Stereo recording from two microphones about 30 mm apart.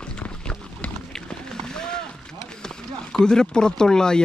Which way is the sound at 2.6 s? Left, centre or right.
Left.